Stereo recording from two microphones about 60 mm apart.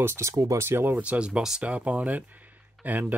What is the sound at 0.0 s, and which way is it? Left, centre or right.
Speech, right.